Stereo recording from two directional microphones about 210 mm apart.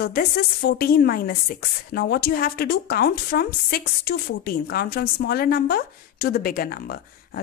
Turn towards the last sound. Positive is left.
turn(degrees=45)  # may be behind; listen again after turning